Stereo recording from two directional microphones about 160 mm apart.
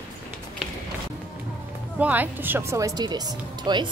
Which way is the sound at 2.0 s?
10° right (ahead or behind).